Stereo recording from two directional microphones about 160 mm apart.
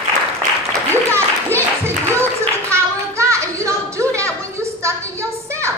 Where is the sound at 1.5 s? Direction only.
15° right (ahead or behind).